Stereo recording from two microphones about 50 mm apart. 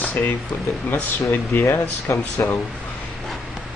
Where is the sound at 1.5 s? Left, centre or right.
Left.